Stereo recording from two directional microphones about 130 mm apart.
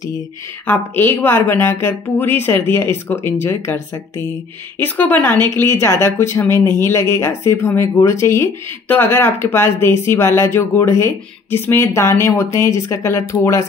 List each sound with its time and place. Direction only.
0.7 s a woman's voice: 15° left (ahead or behind)